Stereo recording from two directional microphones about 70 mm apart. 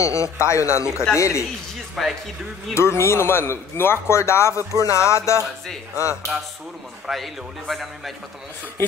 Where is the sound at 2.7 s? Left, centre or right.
Left.